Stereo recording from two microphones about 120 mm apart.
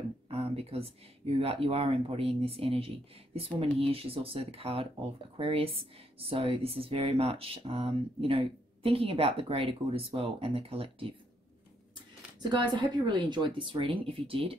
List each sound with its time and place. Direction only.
0.3 s a sound: 55° right (ahead or behind)
1.4 s speech: 55° right (ahead or behind)
12.4 s a woman's voice: 35° right (ahead or behind)